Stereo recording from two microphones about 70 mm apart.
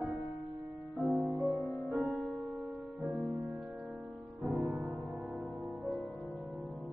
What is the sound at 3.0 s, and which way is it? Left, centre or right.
Music, centre.